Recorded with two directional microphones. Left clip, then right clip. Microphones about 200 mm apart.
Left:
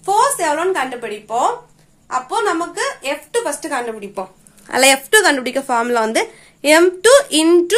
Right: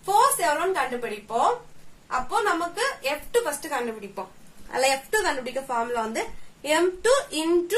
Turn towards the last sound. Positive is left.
turn(degrees=35)  # may be behind; listen again after turning